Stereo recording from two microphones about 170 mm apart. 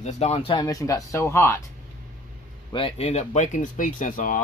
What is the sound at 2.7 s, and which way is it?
Speech, 30° left (ahead or behind).